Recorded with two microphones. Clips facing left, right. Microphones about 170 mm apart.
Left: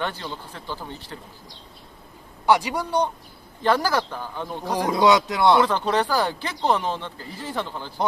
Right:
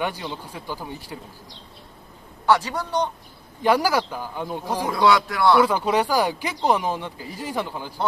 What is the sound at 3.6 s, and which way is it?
Speech, 10° right (ahead or behind).